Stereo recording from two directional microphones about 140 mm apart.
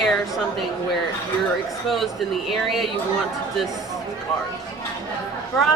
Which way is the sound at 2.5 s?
Centre (ahead or behind).